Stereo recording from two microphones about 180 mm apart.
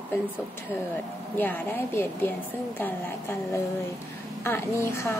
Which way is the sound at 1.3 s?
10° left (ahead or behind).